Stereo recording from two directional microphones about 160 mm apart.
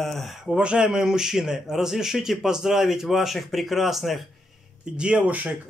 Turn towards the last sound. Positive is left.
turn(degrees=-10)  # may be behind; listen again after turning